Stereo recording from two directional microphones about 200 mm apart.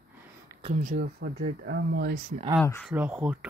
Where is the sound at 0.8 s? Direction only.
45° right (ahead or behind).